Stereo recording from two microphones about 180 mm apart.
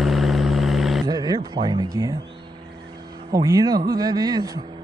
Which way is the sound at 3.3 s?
20° right (ahead or behind).